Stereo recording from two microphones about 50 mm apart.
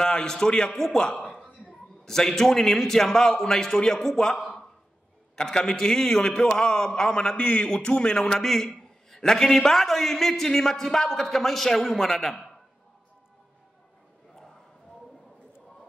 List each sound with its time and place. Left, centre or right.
0.0 s a man's voice: centre
1.3 s a sound: centre
2.0 s a man's voice: centre
7.3 s a man's voice: left; by 12.4 s centre